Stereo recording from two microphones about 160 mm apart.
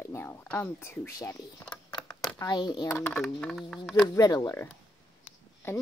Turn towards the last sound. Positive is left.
turn(degrees=15)  # may be behind; listen again after turning